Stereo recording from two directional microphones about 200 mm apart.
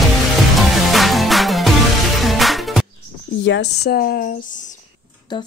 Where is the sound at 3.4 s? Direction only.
60° left (ahead or behind).